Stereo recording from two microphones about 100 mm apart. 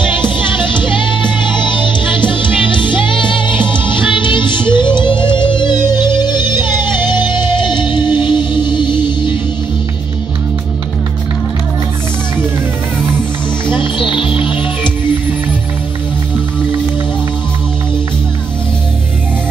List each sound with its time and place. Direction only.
0.0 s music: 55° left (ahead or behind)
13.7 s music: 55° left (ahead or behind)